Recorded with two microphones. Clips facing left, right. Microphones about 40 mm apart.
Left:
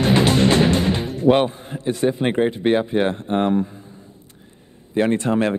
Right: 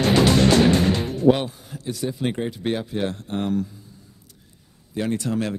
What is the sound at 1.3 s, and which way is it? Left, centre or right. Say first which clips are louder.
Speech: left 4 dB; left.